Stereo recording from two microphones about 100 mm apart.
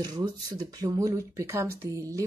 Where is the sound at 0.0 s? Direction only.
45° right (ahead or behind).